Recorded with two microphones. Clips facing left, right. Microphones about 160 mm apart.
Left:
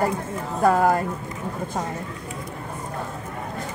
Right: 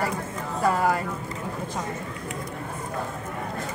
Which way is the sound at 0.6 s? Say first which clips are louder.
Left 4 dB; 45° left (ahead or behind).